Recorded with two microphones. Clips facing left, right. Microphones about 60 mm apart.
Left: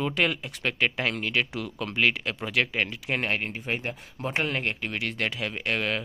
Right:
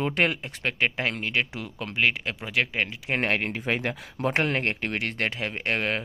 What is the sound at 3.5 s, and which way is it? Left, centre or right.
Speech, right.